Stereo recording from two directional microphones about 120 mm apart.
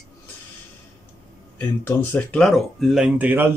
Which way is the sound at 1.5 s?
15° left (ahead or behind).